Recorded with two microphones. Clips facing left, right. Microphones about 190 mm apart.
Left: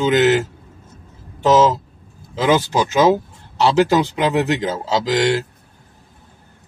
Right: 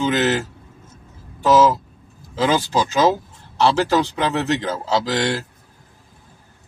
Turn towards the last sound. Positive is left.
turn(degrees=15)  # may be behind; listen again after turning